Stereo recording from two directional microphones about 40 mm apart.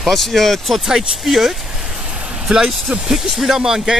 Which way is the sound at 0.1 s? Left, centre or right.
Centre.